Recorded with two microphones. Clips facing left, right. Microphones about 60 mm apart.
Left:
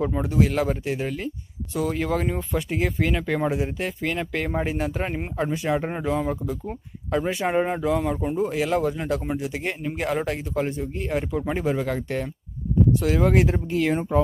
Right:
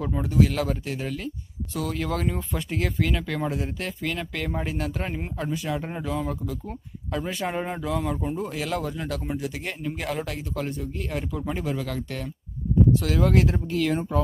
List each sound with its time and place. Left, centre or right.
0.0 s speech: centre
3.0 s speech: centre